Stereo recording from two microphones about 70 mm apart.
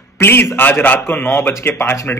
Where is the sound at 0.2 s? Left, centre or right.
Left.